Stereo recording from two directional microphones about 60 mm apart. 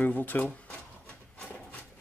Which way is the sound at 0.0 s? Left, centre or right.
Left.